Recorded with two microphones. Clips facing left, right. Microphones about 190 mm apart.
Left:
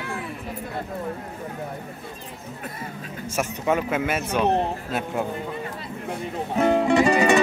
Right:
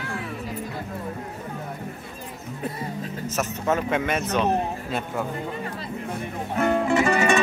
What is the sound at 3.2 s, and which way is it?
Speech, 10° left (ahead or behind).